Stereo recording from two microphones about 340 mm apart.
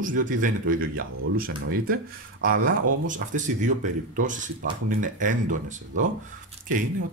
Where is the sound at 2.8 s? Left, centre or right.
Right.